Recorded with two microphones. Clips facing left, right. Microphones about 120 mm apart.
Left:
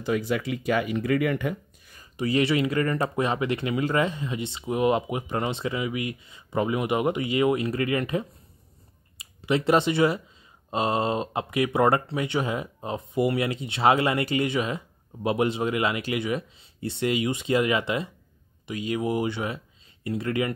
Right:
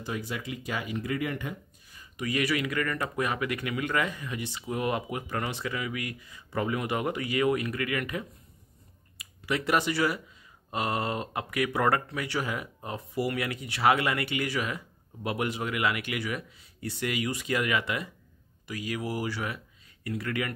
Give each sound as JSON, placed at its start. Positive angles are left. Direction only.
{"t": 0.0, "sound": "speech", "side_deg": 90}
{"t": 2.1, "sound": "speech", "side_deg": 30}